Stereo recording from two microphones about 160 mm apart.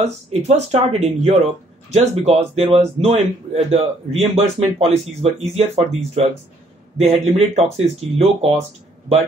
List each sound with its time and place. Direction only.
0.0 s speech: 40° right (ahead or behind)